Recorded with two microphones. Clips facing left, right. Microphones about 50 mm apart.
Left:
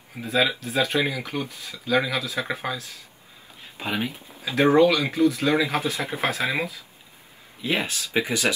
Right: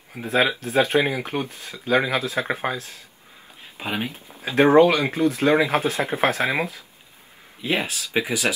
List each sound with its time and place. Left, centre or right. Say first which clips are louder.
0.3 s speech: right 2 dB; right
3.8 s speech: even; centre
4.4 s speech: right 3 dB; right
7.8 s speech: right 1 dB; centre